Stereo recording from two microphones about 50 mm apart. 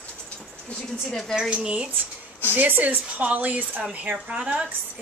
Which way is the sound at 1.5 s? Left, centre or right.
Right.